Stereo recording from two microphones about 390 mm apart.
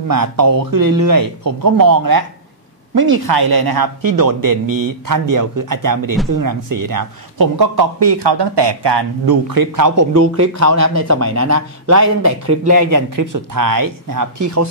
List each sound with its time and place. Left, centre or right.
0.1 s a man's voice: right